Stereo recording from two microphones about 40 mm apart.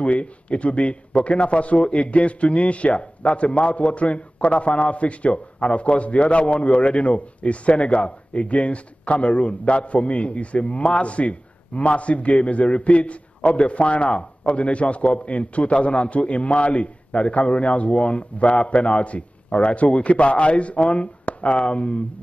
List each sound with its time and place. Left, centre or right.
0.0 s a man's voice: left